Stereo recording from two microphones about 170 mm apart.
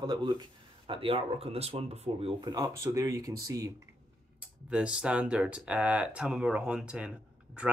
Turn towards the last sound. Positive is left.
turn(degrees=-5)  # may be behind; listen again after turning